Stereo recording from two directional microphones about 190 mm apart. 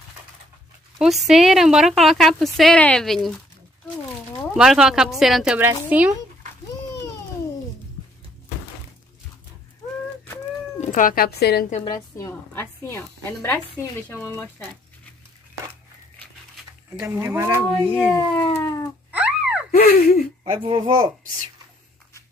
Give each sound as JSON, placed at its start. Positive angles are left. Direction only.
{"t": 0.9, "sound": "a woman's voice", "side_deg": 0}
{"t": 4.6, "sound": "a woman's voice", "side_deg": -5}
{"t": 10.8, "sound": "speech", "side_deg": 40}
{"t": 11.8, "sound": "a woman's voice", "side_deg": 20}
{"t": 16.9, "sound": "speech", "side_deg": -15}
{"t": 17.9, "sound": "a woman's voice", "side_deg": 10}
{"t": 19.1, "sound": "a sound", "side_deg": -5}
{"t": 19.7, "sound": "gasp", "side_deg": 50}
{"t": 20.5, "sound": "speech", "side_deg": -25}